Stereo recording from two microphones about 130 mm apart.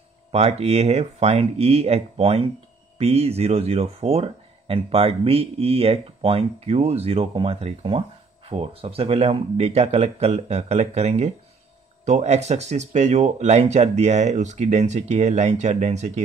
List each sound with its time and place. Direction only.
0.3 s speech: 55° right (ahead or behind)